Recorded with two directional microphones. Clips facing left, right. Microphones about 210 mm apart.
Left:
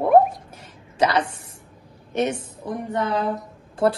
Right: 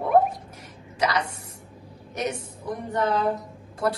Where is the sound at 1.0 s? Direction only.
30° left (ahead or behind).